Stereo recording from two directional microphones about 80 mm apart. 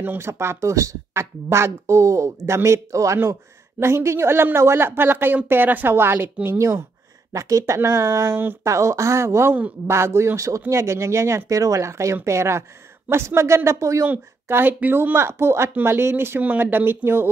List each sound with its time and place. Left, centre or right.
0.0 s speech: right
8.7 s speech: right
14.0 s speech: right